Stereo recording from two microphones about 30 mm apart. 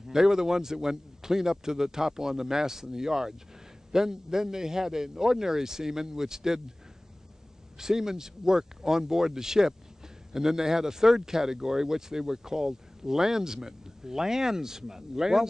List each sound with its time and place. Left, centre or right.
0.1 s a man's voice: centre
7.8 s speech: centre